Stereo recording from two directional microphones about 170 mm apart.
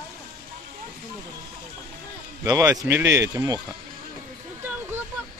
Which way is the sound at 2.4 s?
20° right (ahead or behind).